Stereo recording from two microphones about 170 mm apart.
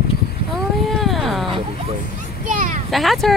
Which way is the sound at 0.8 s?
Centre (ahead or behind).